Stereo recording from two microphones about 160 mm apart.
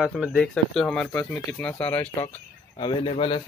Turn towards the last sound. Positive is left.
turn(degrees=35)  # may be behind; listen again after turning